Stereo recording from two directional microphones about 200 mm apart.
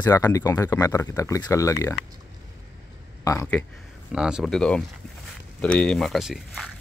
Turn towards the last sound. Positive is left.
turn(degrees=0)  # may be behind; listen again after turning